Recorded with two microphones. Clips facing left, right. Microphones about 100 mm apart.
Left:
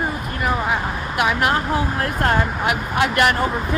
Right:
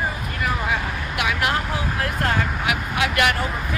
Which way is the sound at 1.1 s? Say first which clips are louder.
Left 4 dB; 40° left (ahead or behind).